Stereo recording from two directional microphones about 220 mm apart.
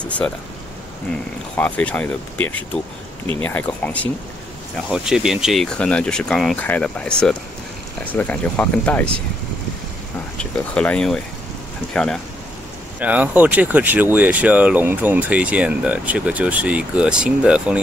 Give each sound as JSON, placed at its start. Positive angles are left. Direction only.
{"t": 0.0, "sound": "speech", "side_deg": 5}
{"t": 1.6, "sound": "speech", "side_deg": 5}
{"t": 10.7, "sound": "speech", "side_deg": 5}